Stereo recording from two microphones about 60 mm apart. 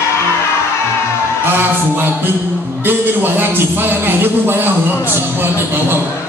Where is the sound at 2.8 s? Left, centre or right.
Right.